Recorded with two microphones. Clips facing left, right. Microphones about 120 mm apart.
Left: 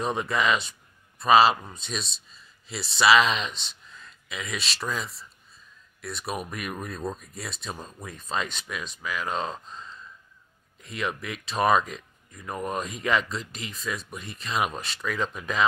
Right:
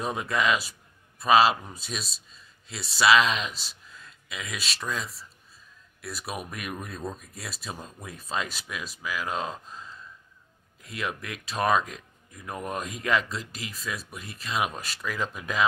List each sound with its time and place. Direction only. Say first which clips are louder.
0.0 s a man's voice: left 1 dB; centre (ahead or behind)